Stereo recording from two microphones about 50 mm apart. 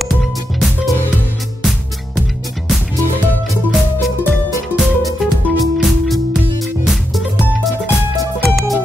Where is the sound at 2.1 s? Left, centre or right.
Centre.